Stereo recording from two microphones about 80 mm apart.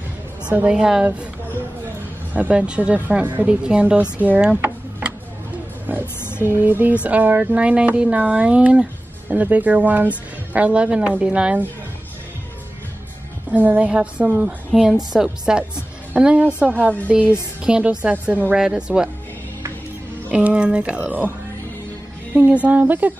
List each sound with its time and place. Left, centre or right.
0.5 s speech: centre
2.3 s speech: centre
5.9 s a sound: right
6.4 s speech: right
13.5 s speech: centre
14.7 s a woman's voice: centre
20.2 s speech: centre
22.5 s speech: centre